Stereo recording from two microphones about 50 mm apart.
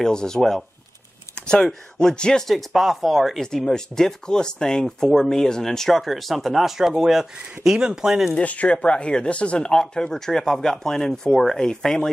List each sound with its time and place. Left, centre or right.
0.0 s speech: centre
2.4 s speech: centre
3.3 s speech: centre
8.4 s speech: left
9.7 s speech: centre